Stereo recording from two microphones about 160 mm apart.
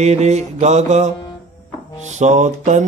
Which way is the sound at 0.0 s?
45° right (ahead or behind).